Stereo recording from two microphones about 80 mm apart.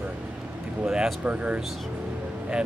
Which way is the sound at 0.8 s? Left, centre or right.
Centre.